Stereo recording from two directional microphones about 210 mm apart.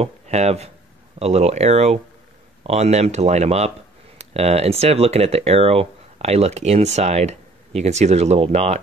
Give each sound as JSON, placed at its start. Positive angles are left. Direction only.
{"t": 0.0, "sound": "speech", "side_deg": -30}